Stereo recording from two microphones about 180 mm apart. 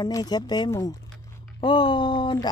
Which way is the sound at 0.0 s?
20° left (ahead or behind).